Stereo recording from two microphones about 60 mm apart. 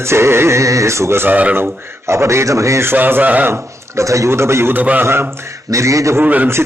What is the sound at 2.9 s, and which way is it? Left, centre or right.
Speech, right.